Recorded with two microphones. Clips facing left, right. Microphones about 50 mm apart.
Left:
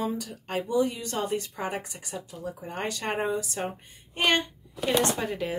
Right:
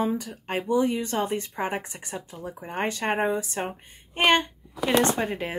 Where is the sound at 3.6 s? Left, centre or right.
Right.